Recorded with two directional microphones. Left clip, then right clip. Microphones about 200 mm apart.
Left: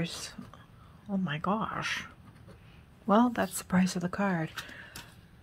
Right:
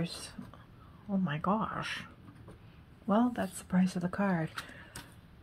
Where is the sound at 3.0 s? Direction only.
30° left (ahead or behind).